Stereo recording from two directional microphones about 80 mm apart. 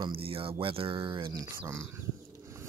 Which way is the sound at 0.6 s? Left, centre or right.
Right.